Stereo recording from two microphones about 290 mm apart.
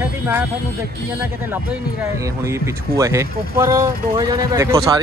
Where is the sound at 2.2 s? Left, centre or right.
Centre.